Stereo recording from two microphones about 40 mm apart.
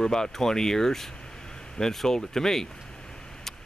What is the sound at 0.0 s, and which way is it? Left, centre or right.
Speech, centre.